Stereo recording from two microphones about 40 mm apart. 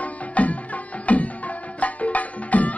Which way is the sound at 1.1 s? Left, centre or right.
Left.